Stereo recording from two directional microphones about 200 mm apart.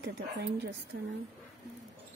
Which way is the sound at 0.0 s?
60° right (ahead or behind).